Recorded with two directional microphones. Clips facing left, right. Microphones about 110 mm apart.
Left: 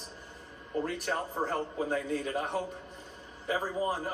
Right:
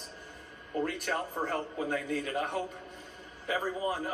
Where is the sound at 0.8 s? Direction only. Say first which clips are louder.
Even; 30° left (ahead or behind).